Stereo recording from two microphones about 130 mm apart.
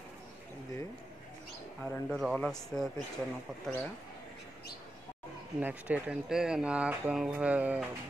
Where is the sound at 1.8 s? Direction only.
5° left (ahead or behind).